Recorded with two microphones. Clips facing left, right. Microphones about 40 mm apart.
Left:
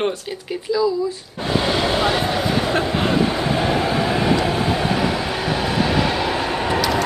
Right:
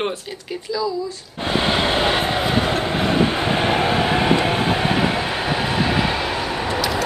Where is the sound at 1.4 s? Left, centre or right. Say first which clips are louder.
Even; right.